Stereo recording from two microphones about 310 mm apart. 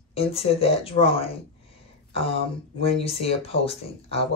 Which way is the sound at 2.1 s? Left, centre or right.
Centre.